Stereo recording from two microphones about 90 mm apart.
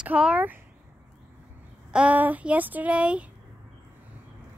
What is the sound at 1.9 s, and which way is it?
Child singing, 15° right (ahead or behind).